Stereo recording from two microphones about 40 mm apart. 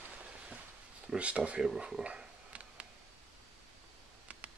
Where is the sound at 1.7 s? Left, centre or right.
Centre.